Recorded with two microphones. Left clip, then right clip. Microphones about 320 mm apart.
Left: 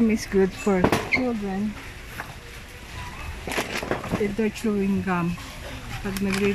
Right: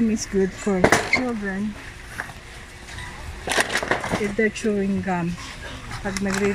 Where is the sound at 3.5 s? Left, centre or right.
Right.